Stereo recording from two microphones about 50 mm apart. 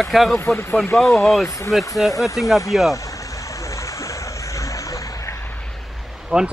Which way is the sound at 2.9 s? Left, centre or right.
Left.